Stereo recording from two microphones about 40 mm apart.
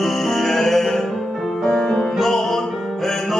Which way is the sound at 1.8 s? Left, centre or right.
Left.